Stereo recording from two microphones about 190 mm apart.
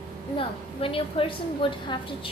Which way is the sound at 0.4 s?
30° left (ahead or behind).